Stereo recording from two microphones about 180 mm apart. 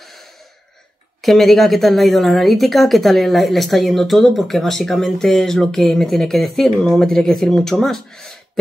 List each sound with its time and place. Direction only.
1.2 s a woman's voice: centre (ahead or behind)